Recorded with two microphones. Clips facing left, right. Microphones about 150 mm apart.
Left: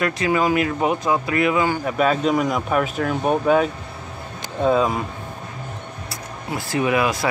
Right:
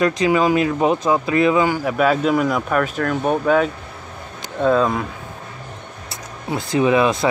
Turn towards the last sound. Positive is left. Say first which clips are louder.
# right 4 dB
turn(degrees=-25)  # may be behind; listen again after turning